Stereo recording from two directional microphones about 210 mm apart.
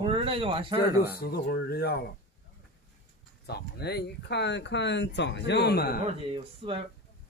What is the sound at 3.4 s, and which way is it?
Speech, 50° left (ahead or behind).